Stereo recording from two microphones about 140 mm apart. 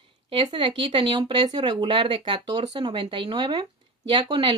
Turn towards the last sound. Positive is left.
turn(degrees=-35)  # may be behind; listen again after turning